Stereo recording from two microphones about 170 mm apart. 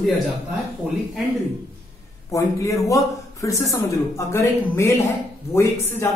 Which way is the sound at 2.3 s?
20° left (ahead or behind).